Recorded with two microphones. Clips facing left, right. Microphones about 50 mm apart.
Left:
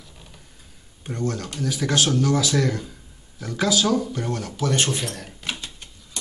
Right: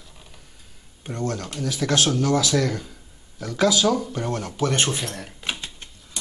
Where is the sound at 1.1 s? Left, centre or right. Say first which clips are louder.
Even; centre.